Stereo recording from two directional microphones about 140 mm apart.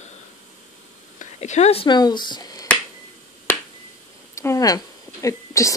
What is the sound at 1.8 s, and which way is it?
Speech, 30° left (ahead or behind).